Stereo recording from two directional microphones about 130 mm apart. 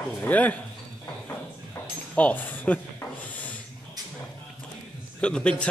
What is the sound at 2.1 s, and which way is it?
Speech, 15° left (ahead or behind).